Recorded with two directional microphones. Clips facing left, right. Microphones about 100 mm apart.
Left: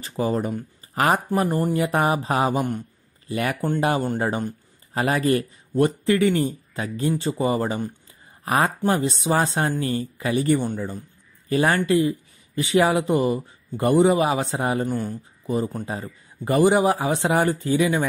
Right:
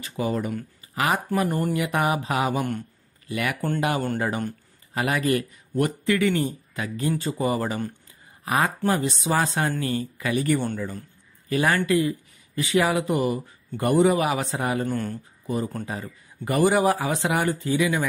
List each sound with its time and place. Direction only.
0.2 s speech: 35° left (ahead or behind)
0.9 s speech: 40° left (ahead or behind)
14.9 s speech: 15° left (ahead or behind)